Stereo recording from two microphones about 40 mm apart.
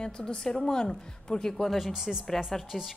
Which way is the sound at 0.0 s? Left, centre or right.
Left.